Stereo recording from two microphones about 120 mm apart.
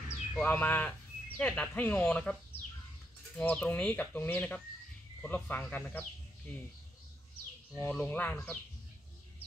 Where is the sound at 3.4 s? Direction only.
10° left (ahead or behind).